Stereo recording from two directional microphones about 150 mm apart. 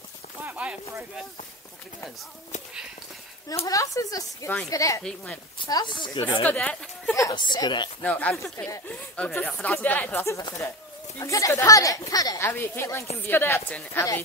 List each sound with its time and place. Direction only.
0.4 s speech: 10° right (ahead or behind)
3.6 s a woman's voice: 20° left (ahead or behind)
5.0 s speech: 10° left (ahead or behind)
5.7 s speech: 30° left (ahead or behind)
6.4 s speech: 10° left (ahead or behind)
7.2 s a woman's voice: 25° left (ahead or behind)
8.0 s a woman's voice: 10° left (ahead or behind)